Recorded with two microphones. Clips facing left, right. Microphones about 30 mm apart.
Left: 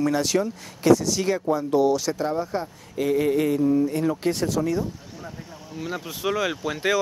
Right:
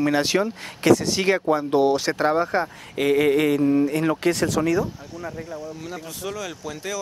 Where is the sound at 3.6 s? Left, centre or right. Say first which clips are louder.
Right 1 dB; right.